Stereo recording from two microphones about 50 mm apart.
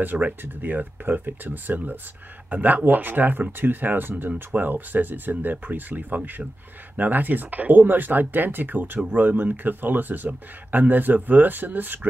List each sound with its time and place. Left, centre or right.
0.0 s speech: right